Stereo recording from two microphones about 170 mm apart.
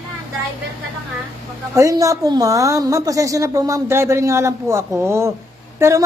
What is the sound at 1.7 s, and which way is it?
A woman's voice, 20° right (ahead or behind).